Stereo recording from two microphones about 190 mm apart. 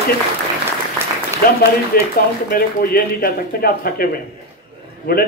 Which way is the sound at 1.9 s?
50° left (ahead or behind).